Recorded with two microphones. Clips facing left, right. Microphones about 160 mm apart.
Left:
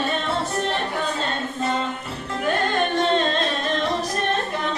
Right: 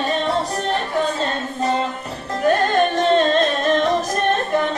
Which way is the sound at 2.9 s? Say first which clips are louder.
Right 4 dB; 45° right (ahead or behind).